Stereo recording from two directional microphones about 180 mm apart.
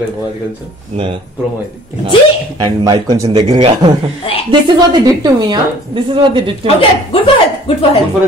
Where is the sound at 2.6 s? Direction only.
25° right (ahead or behind).